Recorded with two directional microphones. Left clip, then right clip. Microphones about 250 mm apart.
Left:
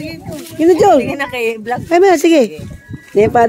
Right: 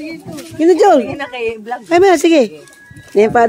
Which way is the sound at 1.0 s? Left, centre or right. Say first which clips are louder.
Left 3 dB; left.